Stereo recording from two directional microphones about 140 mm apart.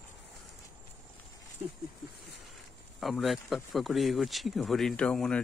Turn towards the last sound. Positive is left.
turn(degrees=5)  # may be behind; listen again after turning